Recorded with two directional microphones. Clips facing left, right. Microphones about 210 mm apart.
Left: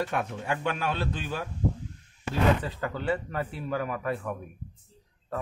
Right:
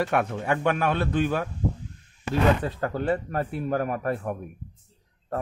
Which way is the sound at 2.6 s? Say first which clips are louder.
Right 4 dB; 45° right (ahead or behind).